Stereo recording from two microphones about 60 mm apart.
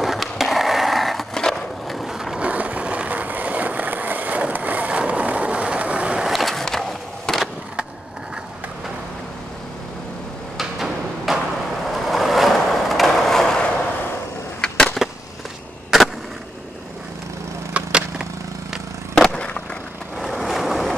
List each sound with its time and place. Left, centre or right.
0.0 s skateboard: centre
2.3 s skateboard: right
6.2 s skateboard: centre
10.6 s a sound: centre
11.8 s skateboard: centre
15.0 s skateboard: centre
17.7 s wood: centre
19.1 s skateboard: centre
20.2 s vehicle: centre